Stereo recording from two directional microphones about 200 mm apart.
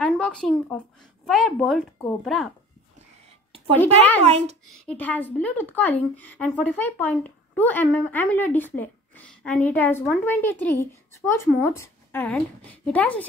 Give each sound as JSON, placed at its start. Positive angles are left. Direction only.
{"t": 0.0, "sound": "speech", "side_deg": 5}
{"t": 4.2, "sound": "a child's voice", "side_deg": -30}
{"t": 4.6, "sound": "a woman's voice", "side_deg": 5}